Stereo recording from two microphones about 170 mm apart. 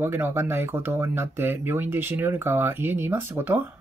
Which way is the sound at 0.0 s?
15° right (ahead or behind).